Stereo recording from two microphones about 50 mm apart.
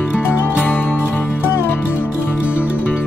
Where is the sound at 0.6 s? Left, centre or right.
Left.